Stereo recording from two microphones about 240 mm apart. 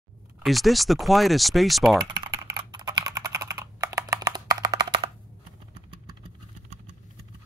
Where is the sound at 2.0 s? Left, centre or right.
Centre.